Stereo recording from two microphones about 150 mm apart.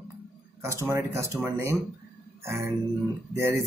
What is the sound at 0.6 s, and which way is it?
Speech, 20° right (ahead or behind).